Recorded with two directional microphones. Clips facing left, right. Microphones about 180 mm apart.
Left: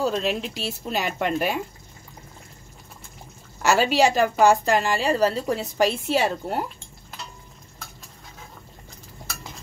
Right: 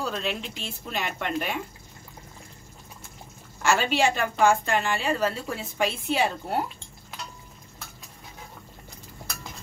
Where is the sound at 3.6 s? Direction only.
40° left (ahead or behind).